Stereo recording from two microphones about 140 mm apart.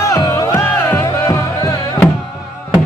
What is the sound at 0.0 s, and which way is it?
Music, 20° left (ahead or behind).